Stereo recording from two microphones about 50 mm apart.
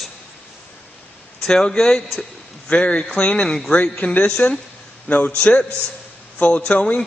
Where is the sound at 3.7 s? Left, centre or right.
Left.